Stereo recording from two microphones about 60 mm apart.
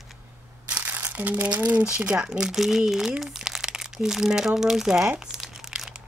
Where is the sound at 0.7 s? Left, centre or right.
Right; by 5.1 s centre.